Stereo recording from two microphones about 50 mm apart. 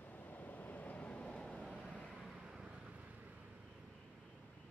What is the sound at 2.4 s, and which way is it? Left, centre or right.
Vehicle, centre.